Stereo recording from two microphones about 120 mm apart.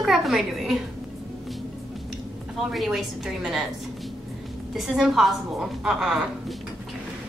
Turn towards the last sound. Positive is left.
turn(degrees=-5)  # may be behind; listen again after turning